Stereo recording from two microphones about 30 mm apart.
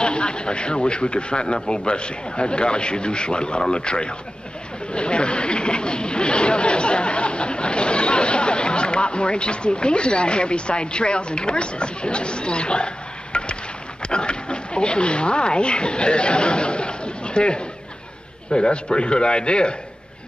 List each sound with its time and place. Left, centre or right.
0.0 s a man's voice: left